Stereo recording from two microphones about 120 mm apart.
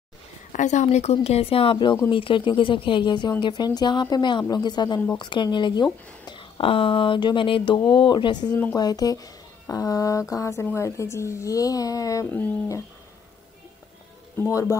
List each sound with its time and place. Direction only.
0.5 s speech: 90° left
1.1 s a woman's voice: 55° left (ahead or behind); by 12.3 s 25° left (ahead or behind)
12.3 s speech: 15° left (ahead or behind)
14.4 s speech: 25° left (ahead or behind)